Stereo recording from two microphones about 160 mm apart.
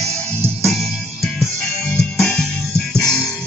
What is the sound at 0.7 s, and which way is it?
Music, centre (ahead or behind).